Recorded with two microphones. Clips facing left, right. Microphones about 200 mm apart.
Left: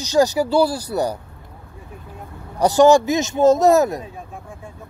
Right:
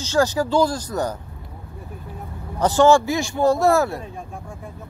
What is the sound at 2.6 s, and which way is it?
A man's voice, 15° left (ahead or behind).